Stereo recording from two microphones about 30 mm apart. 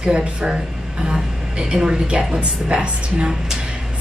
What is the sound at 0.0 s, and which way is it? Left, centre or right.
Speech, right.